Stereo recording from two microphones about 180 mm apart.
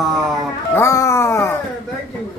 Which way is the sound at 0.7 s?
15° left (ahead or behind).